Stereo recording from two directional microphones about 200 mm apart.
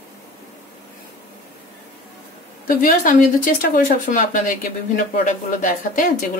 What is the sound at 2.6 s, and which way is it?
Speech, 45° left (ahead or behind).